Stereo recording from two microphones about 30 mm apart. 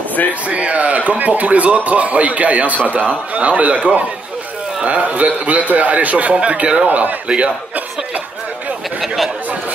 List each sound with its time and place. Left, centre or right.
0.3 s speech: right
5.0 s a man's voice: right
6.9 s a man's voice: right
7.2 s speech: right
9.0 s speech: centre